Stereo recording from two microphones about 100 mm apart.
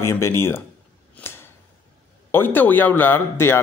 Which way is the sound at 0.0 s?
25° left (ahead or behind).